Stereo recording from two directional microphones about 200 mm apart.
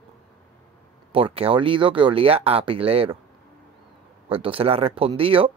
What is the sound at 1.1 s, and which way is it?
Speech, 30° right (ahead or behind).